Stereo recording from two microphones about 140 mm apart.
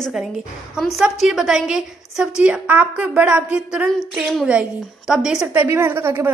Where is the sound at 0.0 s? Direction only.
Centre (ahead or behind).